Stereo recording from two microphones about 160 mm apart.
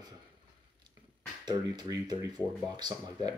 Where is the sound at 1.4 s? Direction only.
25° right (ahead or behind).